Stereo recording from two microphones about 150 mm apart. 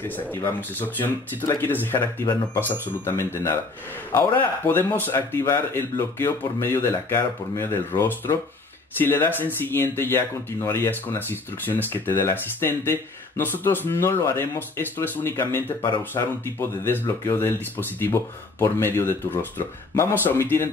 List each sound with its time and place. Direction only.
0.0 s speech: 15° left (ahead or behind)